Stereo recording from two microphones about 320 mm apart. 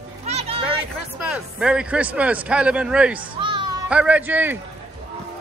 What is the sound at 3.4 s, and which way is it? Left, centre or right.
Music, centre.